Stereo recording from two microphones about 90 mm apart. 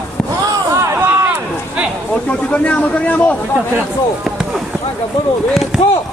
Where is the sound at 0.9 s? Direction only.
20° right (ahead or behind).